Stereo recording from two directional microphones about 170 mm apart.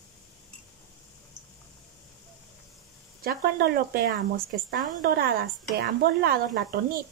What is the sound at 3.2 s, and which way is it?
A woman's voice, 60° right (ahead or behind).